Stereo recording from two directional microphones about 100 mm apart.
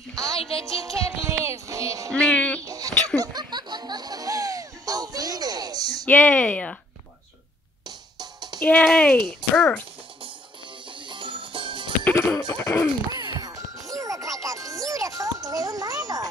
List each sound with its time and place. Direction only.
0.4 s music: 70° left (ahead or behind)
0.7 s music: 35° right (ahead or behind)
2.1 s a sound: 10° left (ahead or behind)
2.6 s a sound: 35° right (ahead or behind)
3.2 s music: 45° right (ahead or behind)
6.0 s speech: 15° left (ahead or behind)
8.2 s music: 45° right (ahead or behind)
8.6 s speech: 10° left (ahead or behind)
9.4 s music: 50° right (ahead or behind)
11.1 s music: 55° right (ahead or behind)
12.0 s music: 20° left (ahead or behind)
13.1 s music: 40° right (ahead or behind)